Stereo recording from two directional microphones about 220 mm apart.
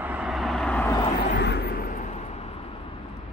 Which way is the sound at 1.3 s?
50° left (ahead or behind).